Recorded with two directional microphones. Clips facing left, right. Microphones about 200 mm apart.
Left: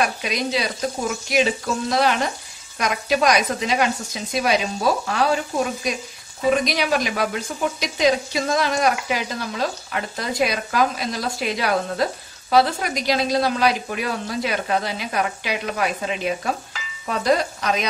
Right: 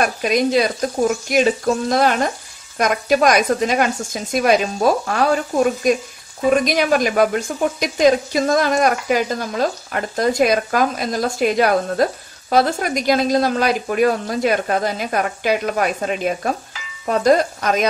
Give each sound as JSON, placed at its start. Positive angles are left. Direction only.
{"t": 0.0, "sound": "speech", "side_deg": -50}